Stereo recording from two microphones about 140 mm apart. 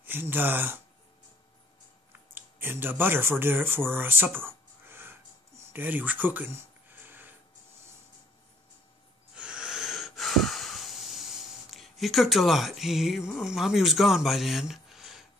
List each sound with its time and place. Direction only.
0.0 s speech: 15° right (ahead or behind)
2.3 s speech: 15° right (ahead or behind)
4.5 s a sound: 15° right (ahead or behind)
9.3 s wheeze: 5° right (ahead or behind)
13.4 s speech: 5° right (ahead or behind)